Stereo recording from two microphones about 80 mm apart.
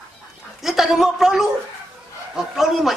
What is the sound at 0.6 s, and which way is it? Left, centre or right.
A man's voice, centre.